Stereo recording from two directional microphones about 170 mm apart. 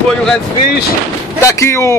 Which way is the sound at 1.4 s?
15° left (ahead or behind).